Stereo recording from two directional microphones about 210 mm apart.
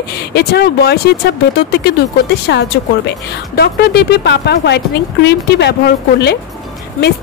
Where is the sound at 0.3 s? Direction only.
50° left (ahead or behind).